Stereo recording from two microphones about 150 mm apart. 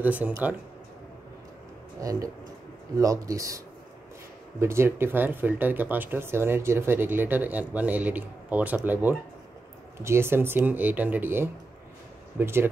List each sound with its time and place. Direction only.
0.0 s speech: 10° right (ahead or behind)
2.0 s speech: 25° right (ahead or behind)